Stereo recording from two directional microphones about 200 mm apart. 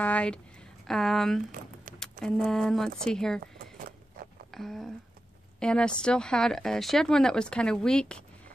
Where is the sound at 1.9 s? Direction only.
45° right (ahead or behind).